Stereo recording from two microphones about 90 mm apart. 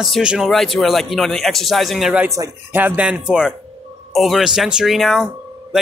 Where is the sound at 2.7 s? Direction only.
15° right (ahead or behind).